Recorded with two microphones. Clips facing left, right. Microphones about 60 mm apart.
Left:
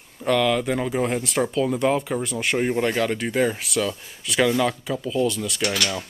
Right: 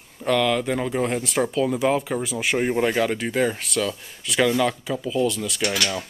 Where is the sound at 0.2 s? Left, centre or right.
Centre.